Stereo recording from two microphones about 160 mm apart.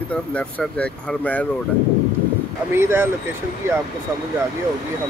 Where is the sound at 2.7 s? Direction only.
15° right (ahead or behind).